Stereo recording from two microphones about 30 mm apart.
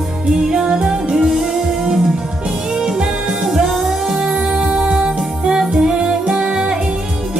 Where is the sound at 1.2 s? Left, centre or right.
Centre.